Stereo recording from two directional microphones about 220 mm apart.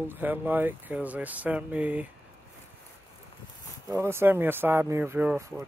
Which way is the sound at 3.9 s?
10° right (ahead or behind).